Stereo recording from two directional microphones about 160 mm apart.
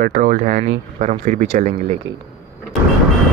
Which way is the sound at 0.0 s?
60° right (ahead or behind).